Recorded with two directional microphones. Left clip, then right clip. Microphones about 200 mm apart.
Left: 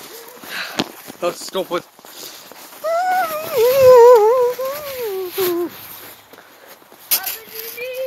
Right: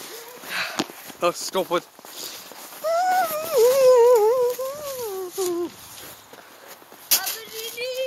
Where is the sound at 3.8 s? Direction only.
10° left (ahead or behind).